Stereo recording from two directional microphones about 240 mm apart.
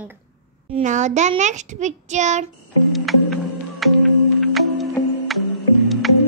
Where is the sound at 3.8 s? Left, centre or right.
Centre.